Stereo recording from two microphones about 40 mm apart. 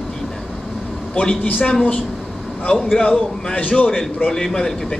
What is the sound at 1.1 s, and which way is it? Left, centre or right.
A woman's voice, left.